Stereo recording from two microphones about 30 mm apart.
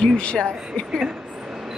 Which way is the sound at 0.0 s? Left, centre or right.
Left.